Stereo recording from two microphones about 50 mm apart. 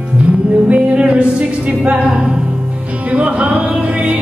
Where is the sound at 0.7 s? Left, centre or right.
Right.